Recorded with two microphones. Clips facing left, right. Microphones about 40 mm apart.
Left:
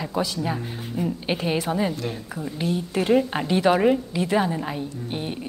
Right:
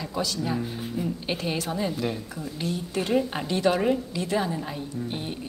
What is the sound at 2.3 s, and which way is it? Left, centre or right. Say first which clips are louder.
A woman's voice: left 4 dB; centre.